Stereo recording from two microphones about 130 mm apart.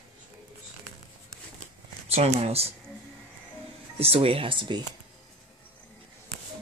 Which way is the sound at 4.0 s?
50° right (ahead or behind).